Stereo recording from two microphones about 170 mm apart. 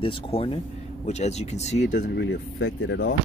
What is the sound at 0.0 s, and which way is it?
Speech, 30° left (ahead or behind).